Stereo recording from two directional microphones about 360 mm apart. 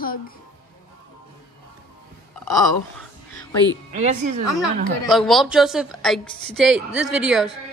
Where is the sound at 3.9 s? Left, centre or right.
Centre.